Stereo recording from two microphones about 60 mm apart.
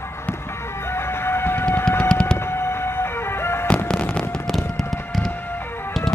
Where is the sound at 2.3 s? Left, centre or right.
Left.